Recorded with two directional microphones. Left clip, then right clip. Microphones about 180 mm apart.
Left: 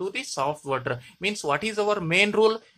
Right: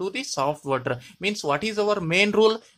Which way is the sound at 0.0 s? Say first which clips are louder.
Right 2 dB; 25° right (ahead or behind).